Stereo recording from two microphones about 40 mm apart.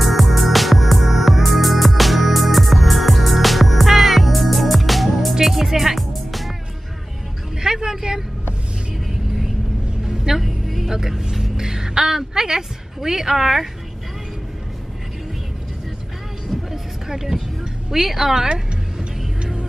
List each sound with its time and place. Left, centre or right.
0.0 s music: centre
7.6 s vehicle: centre
10.0 s music: centre
11.0 s vehicle: centre
11.5 s a sound: centre
16.7 s vehicle: centre
17.8 s speech: centre
18.5 s music: right